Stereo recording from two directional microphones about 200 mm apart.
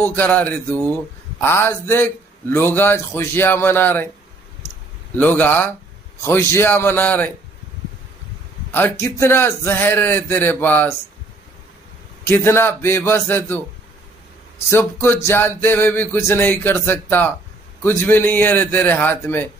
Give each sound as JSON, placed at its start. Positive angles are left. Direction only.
{"t": 0.0, "sound": "a man's voice", "side_deg": 10}
{"t": 5.1, "sound": "a man's voice", "side_deg": 10}
{"t": 8.7, "sound": "a man's voice", "side_deg": 10}
{"t": 12.3, "sound": "a man's voice", "side_deg": 10}
{"t": 14.7, "sound": "a man's voice", "side_deg": 10}